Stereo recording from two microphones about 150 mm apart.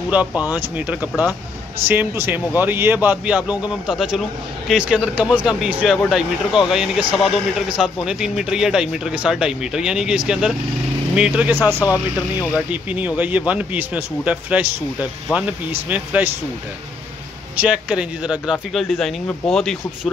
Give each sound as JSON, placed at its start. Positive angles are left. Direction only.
{"t": 0.1, "sound": "a man's voice", "side_deg": -10}
{"t": 11.8, "sound": "speech", "side_deg": 20}
{"t": 12.5, "sound": "a man's voice", "side_deg": -10}
{"t": 17.6, "sound": "speech", "side_deg": -10}